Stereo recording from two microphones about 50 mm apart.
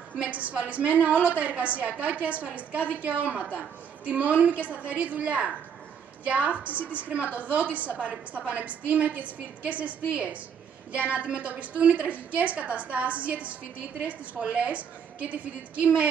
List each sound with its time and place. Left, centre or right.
0.1 s a woman's voice: right